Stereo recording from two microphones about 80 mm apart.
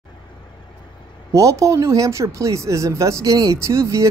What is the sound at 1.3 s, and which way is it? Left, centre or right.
Speech, right.